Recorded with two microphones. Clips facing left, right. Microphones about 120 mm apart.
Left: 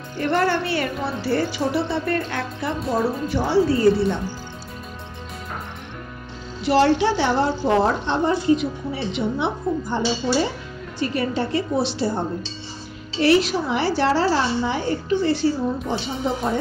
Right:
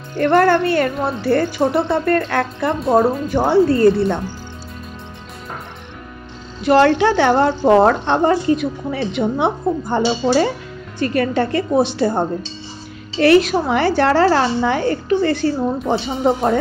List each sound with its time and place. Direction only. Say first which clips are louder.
0.2 s a woman's voice: right 7 dB; 55° right (ahead or behind)
6.6 s a woman's voice: right 4 dB; 55° right (ahead or behind)